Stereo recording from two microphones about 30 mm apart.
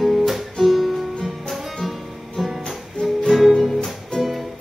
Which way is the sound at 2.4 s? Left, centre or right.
Centre.